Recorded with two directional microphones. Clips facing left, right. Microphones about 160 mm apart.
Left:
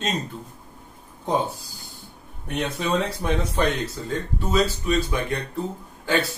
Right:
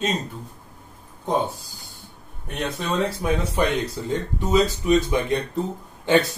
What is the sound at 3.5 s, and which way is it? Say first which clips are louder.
Speech: right 1 dB; 15° right (ahead or behind).